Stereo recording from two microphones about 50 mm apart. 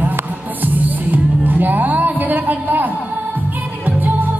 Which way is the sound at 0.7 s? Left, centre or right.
Right.